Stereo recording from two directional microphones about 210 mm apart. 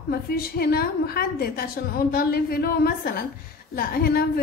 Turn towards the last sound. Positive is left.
turn(degrees=45)  # may be behind; listen again after turning